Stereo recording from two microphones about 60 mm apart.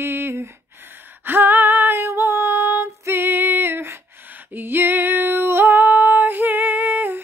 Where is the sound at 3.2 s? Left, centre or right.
Right.